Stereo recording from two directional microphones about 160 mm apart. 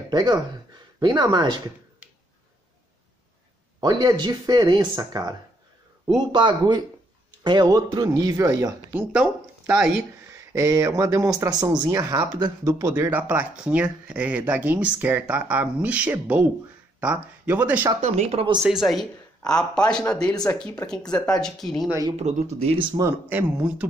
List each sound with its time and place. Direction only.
0.1 s speech: 25° right (ahead or behind)
3.8 s speech: 25° right (ahead or behind)
9.1 s speech: 5° right (ahead or behind)
10.5 s speech: 20° right (ahead or behind)
18.0 s speech: 45° right (ahead or behind)
18.6 s speech: centre (ahead or behind)
22.1 s speech: 40° right (ahead or behind)
23.0 s speech: 10° right (ahead or behind)